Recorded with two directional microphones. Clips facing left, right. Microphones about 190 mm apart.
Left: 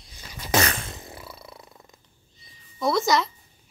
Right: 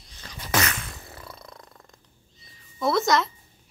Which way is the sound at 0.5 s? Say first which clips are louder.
Left 3 dB; 30° left (ahead or behind).